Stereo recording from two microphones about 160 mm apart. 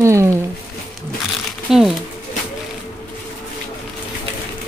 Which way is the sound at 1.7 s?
Centre (ahead or behind).